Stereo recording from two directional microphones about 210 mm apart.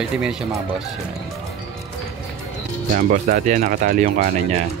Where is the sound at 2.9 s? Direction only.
40° right (ahead or behind).